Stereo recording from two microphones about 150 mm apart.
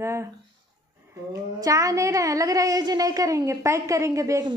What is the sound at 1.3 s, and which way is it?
A woman's voice, 20° right (ahead or behind).